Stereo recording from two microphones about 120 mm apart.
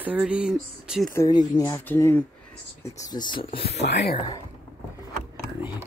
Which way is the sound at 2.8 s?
30° left (ahead or behind).